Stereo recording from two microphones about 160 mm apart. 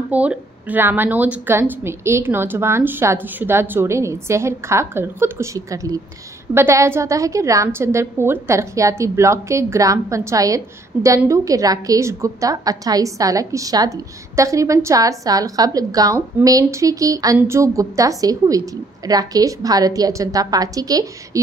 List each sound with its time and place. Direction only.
0.1 s a woman's voice: 10° right (ahead or behind)